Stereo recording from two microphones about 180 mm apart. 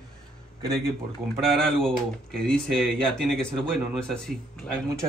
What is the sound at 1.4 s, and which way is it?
Speech, 5° left (ahead or behind).